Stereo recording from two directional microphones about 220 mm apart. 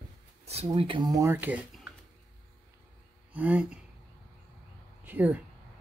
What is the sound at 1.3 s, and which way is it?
Speech, 5° right (ahead or behind).